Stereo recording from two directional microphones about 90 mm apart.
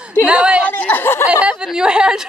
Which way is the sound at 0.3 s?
10° right (ahead or behind).